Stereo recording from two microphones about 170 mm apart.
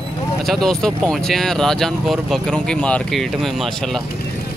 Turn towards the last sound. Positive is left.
turn(degrees=0)  # may be behind; listen again after turning